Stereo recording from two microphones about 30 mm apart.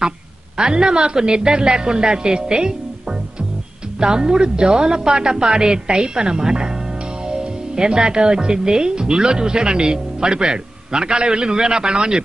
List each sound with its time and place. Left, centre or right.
0.6 s speech: right